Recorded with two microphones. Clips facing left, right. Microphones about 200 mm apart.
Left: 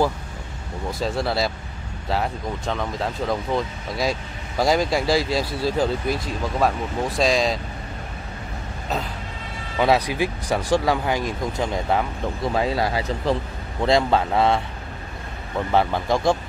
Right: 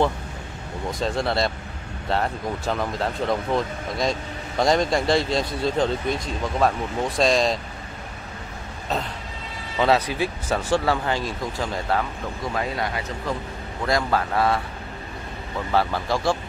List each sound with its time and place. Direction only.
0.9 s speech: 5° left (ahead or behind)
8.8 s a sound: centre (ahead or behind)
9.8 s speech: 10° left (ahead or behind)
12.5 s speech: 30° left (ahead or behind)
15.7 s speech: 20° left (ahead or behind)